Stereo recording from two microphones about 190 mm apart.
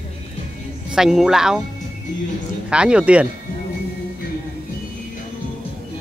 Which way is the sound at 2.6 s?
5° right (ahead or behind).